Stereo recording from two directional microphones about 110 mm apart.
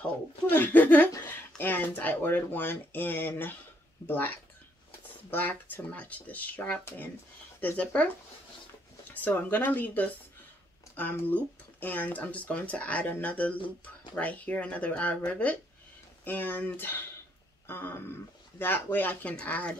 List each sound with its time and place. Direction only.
0.5 s speech: 15° left (ahead or behind)
5.3 s speech: 15° left (ahead or behind)
9.1 s speech: 15° left (ahead or behind)
17.6 s throat clearing: 20° left (ahead or behind)
18.6 s speech: 20° left (ahead or behind)